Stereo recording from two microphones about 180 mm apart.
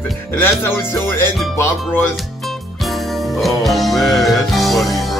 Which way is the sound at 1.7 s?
Centre (ahead or behind).